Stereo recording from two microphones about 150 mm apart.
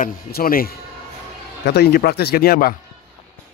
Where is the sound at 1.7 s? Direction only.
90° left.